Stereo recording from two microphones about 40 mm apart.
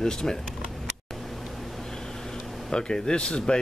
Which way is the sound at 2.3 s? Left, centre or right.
Centre.